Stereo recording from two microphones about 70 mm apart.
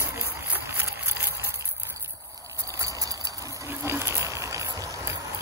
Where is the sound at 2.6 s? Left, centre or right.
Right.